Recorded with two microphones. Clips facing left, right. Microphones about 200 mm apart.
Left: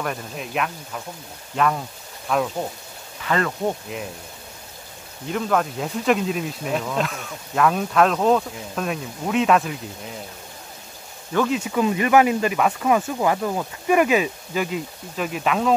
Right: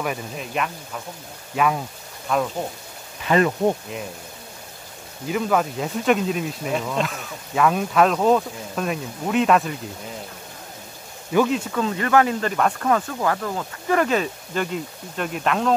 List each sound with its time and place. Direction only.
0.0 s speech: centre (ahead or behind)
3.3 s speech: 20° right (ahead or behind)
5.2 s speech: 5° right (ahead or behind)
11.3 s speech: centre (ahead or behind)
11.7 s speech: 15° left (ahead or behind)